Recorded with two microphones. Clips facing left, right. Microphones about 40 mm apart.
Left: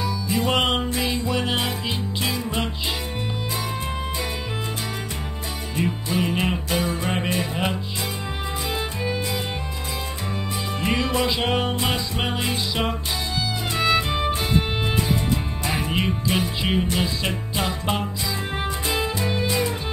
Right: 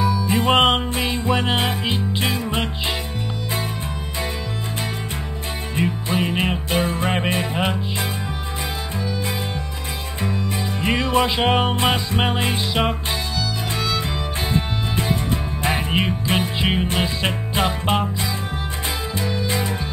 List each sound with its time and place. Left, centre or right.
0.3 s music: right
5.8 s music: right
10.8 s music: right
13.7 s music: left
15.6 s music: right
19.4 s music: right